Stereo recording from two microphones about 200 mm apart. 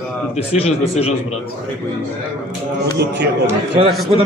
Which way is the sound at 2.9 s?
60° right (ahead or behind).